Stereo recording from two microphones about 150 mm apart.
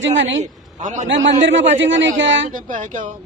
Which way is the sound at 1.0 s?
55° right (ahead or behind).